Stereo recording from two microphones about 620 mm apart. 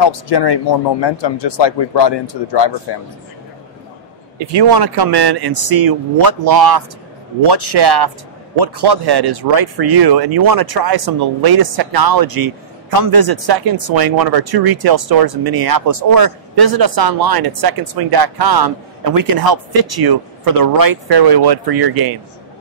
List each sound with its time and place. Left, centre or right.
0.0 s speech: left
4.4 s speech: right